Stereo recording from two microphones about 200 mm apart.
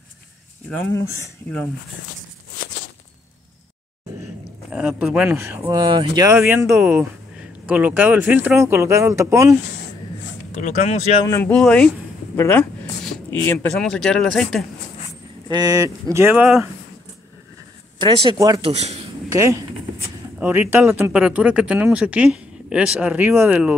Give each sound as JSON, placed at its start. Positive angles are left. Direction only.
{"t": 0.9, "sound": "speech", "side_deg": 10}
{"t": 4.6, "sound": "speech", "side_deg": -5}
{"t": 6.3, "sound": "speech", "side_deg": -10}
{"t": 10.5, "sound": "speech", "side_deg": 35}
{"t": 11.2, "sound": "speech", "side_deg": 10}
{"t": 15.4, "sound": "speech", "side_deg": -20}
{"t": 17.9, "sound": "speech", "side_deg": -20}
{"t": 18.7, "sound": "speech", "side_deg": -30}
{"t": 19.2, "sound": "speech", "side_deg": -15}